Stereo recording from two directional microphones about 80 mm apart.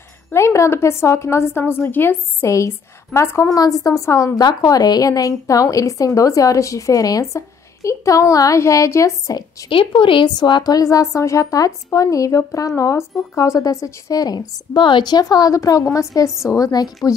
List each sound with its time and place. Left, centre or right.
0.3 s a woman's voice: left
2.4 s a woman's voice: left
4.4 s a woman's voice: left
9.7 s a woman's voice: left